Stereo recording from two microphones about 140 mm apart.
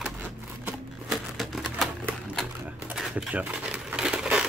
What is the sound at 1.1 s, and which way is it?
Typewriter, centre (ahead or behind).